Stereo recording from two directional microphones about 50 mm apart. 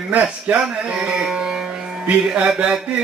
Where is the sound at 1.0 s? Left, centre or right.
Centre.